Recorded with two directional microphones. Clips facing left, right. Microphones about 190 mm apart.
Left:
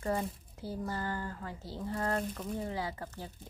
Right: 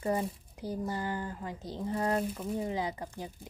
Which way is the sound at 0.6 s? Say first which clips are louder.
Right 3 dB; 15° right (ahead or behind).